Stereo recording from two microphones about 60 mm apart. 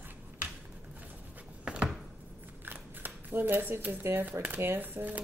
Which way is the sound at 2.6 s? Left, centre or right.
Right.